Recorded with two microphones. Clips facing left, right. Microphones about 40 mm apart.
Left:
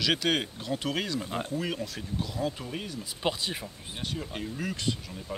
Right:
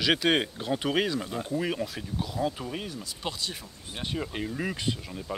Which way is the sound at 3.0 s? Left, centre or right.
Left.